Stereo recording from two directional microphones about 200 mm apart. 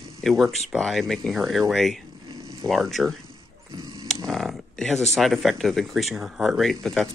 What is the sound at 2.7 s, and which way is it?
Speech, centre (ahead or behind).